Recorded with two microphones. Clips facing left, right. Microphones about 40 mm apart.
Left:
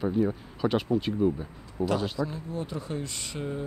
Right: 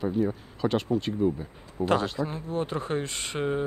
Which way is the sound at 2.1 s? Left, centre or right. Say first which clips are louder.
Right 2 dB; right.